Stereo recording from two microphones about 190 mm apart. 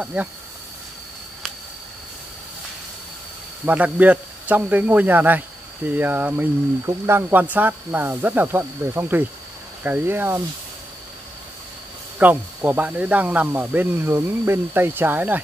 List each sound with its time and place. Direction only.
0.0 s speech: 5° right (ahead or behind)
3.6 s speech: 10° right (ahead or behind)
12.2 s speech: 10° right (ahead or behind)